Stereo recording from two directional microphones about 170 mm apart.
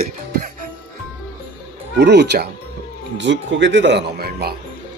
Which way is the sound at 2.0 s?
80° right.